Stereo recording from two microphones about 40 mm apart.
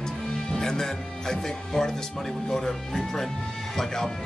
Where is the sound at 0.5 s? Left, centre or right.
Centre.